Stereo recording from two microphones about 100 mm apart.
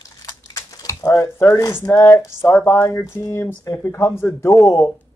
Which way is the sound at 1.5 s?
25° left (ahead or behind).